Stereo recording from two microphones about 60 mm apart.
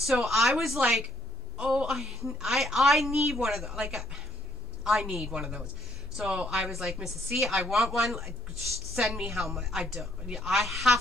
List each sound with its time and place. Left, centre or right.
0.0 s a woman's voice: centre
1.6 s a woman's voice: centre
1.9 s a woman's voice: centre